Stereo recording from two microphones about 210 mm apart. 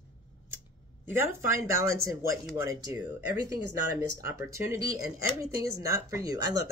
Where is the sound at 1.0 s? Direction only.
10° right (ahead or behind).